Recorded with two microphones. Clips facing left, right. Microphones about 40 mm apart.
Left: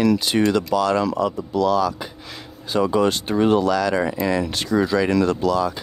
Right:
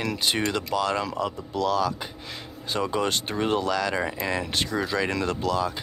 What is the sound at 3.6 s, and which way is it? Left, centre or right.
Speech, right.